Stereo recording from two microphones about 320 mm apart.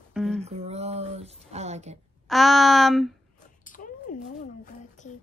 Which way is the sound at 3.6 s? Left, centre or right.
Left.